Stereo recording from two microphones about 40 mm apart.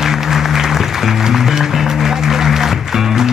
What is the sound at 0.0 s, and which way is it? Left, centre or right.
Music, centre.